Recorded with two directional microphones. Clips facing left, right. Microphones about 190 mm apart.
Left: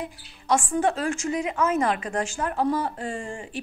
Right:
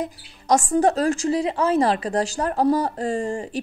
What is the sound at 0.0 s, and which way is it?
Speech, 40° right (ahead or behind).